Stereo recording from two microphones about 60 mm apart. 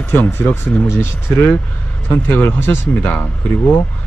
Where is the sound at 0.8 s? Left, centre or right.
Left.